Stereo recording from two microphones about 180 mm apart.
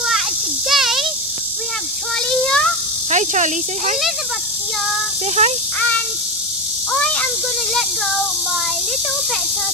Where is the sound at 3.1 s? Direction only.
40° right (ahead or behind).